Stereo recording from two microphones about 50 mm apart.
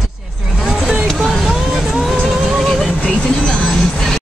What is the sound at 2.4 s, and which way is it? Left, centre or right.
Music, centre.